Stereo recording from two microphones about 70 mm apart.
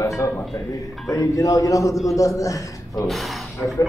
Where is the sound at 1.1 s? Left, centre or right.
Left.